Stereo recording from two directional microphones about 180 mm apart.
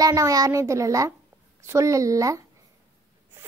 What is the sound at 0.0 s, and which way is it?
A woman's voice, 20° right (ahead or behind).